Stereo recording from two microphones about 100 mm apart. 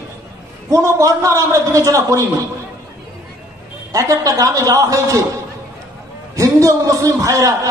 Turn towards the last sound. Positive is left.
turn(degrees=-30)  # may be behind; listen again after turning